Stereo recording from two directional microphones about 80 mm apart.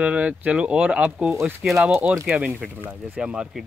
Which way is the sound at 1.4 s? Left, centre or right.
Right.